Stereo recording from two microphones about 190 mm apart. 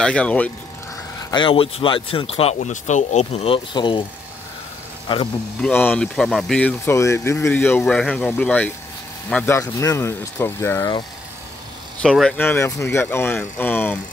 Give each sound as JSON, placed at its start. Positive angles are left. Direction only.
{"t": 0.0, "sound": "speech", "side_deg": 5}
{"t": 1.3, "sound": "speech", "side_deg": 25}
{"t": 5.0, "sound": "speech", "side_deg": 30}
{"t": 5.6, "sound": "speech", "side_deg": 10}
{"t": 6.9, "sound": "speech", "side_deg": 15}
{"t": 12.0, "sound": "speech", "side_deg": 0}